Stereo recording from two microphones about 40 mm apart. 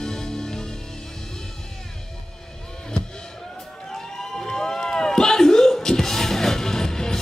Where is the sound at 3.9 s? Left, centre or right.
Centre.